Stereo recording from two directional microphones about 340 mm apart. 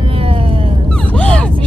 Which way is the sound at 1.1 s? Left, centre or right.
Centre.